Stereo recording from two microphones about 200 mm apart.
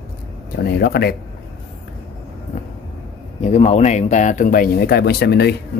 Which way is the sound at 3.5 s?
35° left (ahead or behind).